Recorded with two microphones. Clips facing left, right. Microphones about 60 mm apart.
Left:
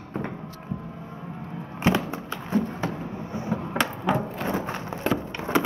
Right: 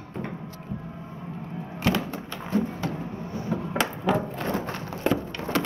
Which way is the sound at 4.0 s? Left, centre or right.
Centre.